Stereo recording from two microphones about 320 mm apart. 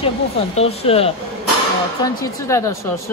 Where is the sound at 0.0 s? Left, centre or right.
Centre.